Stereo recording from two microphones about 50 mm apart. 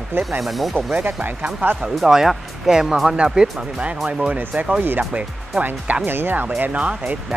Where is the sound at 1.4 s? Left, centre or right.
Right.